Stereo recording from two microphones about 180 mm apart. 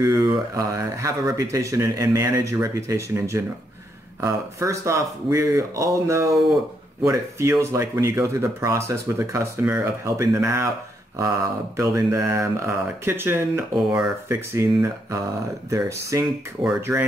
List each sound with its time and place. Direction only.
0.0 s speech: 20° right (ahead or behind)